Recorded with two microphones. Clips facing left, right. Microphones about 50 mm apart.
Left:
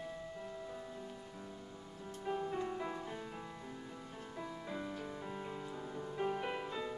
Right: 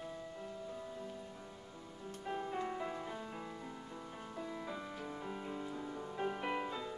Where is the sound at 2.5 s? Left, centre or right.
Centre.